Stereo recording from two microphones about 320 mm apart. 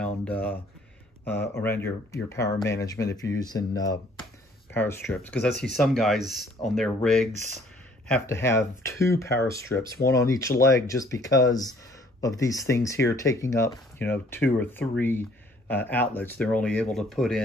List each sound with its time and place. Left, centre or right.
0.0 s speech: centre
7.3 s speech: right
8.1 s speech: centre